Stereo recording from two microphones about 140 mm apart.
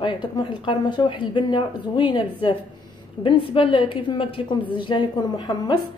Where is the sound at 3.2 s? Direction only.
40° left (ahead or behind).